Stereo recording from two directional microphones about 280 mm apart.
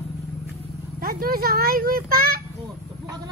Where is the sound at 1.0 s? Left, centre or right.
Right.